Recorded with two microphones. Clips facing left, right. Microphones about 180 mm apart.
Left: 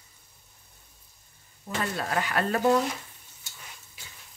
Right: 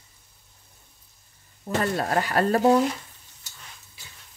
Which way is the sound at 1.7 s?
40° right (ahead or behind).